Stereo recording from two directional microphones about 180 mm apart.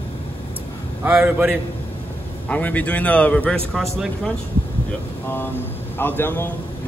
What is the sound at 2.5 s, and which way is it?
A man's voice, 10° left (ahead or behind).